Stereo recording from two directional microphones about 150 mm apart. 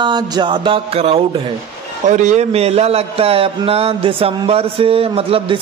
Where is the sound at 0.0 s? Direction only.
30° right (ahead or behind).